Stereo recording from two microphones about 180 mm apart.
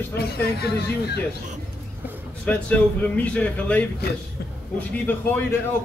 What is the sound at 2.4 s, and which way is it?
A man's voice, 10° left (ahead or behind).